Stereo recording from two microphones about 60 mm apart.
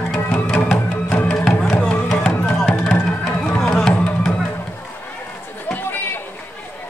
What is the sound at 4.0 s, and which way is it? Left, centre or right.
Music, left.